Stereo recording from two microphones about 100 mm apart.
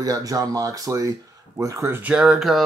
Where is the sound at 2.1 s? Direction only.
5° right (ahead or behind).